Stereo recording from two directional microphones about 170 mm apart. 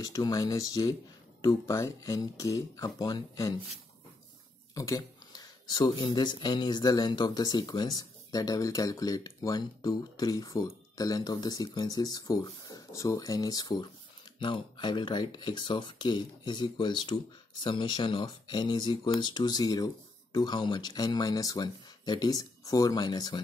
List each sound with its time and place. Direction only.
0.0 s speech: 20° left (ahead or behind)
4.7 s speech: 20° left (ahead or behind)